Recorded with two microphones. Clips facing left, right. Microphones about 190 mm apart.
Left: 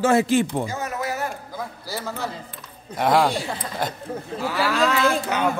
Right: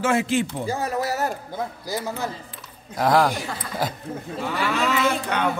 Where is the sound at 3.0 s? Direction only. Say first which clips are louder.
Even; centre (ahead or behind).